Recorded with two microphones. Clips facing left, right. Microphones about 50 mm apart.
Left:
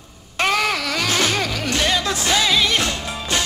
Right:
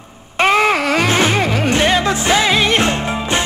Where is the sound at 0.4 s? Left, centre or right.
Right.